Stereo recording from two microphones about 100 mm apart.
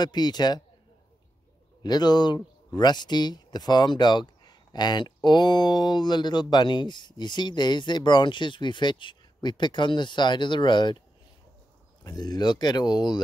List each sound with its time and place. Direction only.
0.0 s speech: 45° left (ahead or behind)
1.8 s speech: 45° left (ahead or behind)
12.0 s speech: 40° left (ahead or behind)